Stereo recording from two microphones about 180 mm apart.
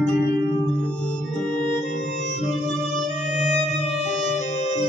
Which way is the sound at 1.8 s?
45° left (ahead or behind).